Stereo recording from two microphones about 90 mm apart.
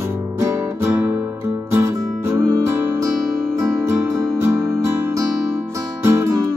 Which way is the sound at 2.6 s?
35° right (ahead or behind).